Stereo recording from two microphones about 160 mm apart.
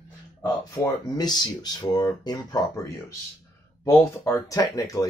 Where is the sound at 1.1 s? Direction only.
25° left (ahead or behind).